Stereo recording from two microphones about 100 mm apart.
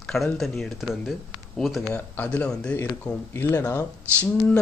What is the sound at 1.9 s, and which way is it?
Speech, 15° left (ahead or behind).